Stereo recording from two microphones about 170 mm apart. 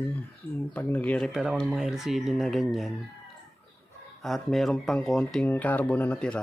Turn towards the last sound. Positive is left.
turn(degrees=5)  # may be behind; listen again after turning